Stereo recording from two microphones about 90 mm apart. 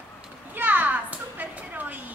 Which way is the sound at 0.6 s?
20° right (ahead or behind).